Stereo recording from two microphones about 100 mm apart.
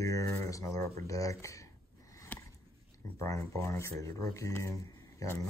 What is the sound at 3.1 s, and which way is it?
Speech, 30° left (ahead or behind).